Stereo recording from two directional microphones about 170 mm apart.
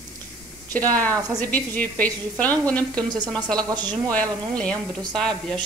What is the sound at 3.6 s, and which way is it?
Speech, 25° right (ahead or behind).